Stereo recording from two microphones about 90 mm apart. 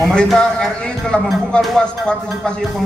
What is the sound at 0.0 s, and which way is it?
Speech, 5° left (ahead or behind).